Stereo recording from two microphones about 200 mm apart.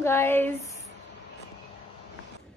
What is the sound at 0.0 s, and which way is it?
Speech, 10° left (ahead or behind).